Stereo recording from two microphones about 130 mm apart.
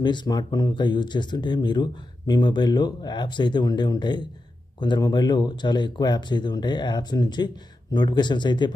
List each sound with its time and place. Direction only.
0.0 s speech: 35° left (ahead or behind)